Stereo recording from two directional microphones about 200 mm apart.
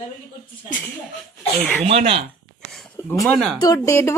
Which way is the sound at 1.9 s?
30° right (ahead or behind).